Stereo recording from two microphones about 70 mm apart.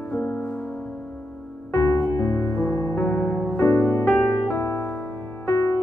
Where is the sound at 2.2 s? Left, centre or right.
Left.